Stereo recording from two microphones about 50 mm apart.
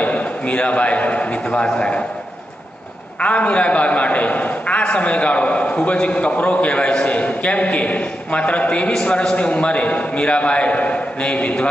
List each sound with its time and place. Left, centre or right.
0.0 s a man's voice: left
3.2 s a man's voice: left